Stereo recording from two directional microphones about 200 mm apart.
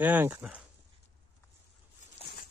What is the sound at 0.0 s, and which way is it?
Speech, 10° right (ahead or behind).